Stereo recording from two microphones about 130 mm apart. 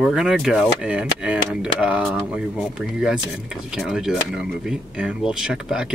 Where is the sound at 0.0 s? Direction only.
5° right (ahead or behind).